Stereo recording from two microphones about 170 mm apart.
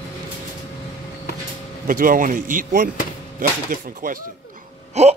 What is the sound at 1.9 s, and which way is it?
Speech, 55° right (ahead or behind).